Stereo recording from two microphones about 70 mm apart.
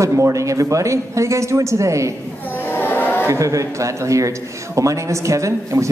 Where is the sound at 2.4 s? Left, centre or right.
Left.